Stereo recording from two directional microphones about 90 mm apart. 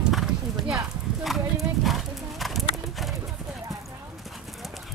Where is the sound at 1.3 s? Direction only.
Centre (ahead or behind).